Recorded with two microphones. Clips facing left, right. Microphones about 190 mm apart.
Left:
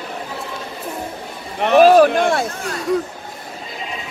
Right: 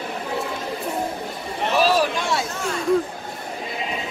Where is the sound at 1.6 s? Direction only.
60° left (ahead or behind).